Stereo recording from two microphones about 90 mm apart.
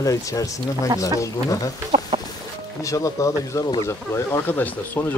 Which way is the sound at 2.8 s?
40° left (ahead or behind).